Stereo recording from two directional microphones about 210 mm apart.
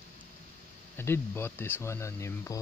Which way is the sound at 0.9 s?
10° left (ahead or behind).